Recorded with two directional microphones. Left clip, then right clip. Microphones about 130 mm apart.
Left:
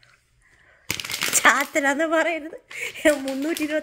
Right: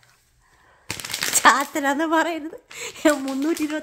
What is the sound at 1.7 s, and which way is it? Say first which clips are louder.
Speech: left 1 dB; 15° right (ahead or behind).